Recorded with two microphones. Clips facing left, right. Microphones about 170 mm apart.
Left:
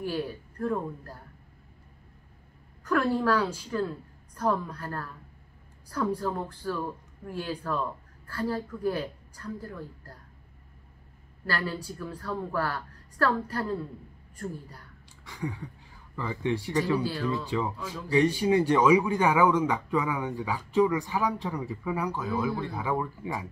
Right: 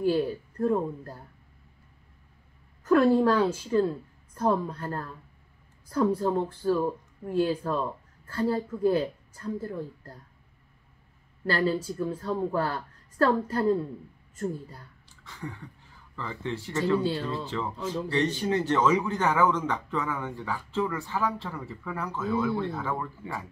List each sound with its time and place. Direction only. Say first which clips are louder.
0.0 s a woman's voice: right 7 dB; 25° right (ahead or behind)
2.8 s a woman's voice: right 6 dB; 25° right (ahead or behind)
11.4 s a woman's voice: right 6 dB; 20° right (ahead or behind)
15.2 s a sound: left 4 dB; 15° left (ahead or behind)
16.2 s speech: left 4 dB; 15° left (ahead or behind)
16.8 s a woman's voice: right 2 dB; 25° right (ahead or behind)
17.5 s speech: left 1 dB; 10° left (ahead or behind)